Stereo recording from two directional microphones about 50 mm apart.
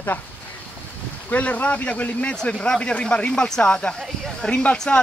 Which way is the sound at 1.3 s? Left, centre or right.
Left.